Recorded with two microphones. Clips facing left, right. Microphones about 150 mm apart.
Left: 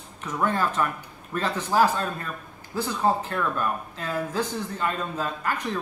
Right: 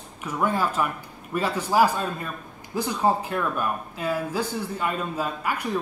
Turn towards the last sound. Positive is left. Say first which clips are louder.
# right 1 dB
turn(degrees=-10)  # may be behind; listen again after turning